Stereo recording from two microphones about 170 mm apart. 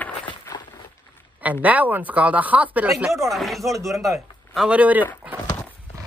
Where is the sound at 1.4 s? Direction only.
10° right (ahead or behind).